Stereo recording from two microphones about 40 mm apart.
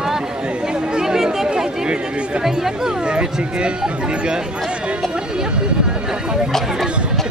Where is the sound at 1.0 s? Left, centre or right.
Centre.